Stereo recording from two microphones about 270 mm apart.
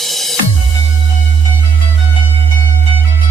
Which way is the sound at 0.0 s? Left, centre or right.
Centre.